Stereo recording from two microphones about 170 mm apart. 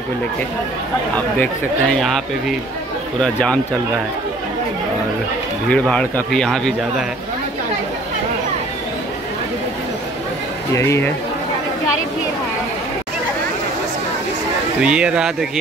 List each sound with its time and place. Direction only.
1.1 s a man's voice: 5° left (ahead or behind)
5.7 s a man's voice: 5° left (ahead or behind)
10.7 s speech: 15° left (ahead or behind)
14.8 s a man's voice: 5° right (ahead or behind)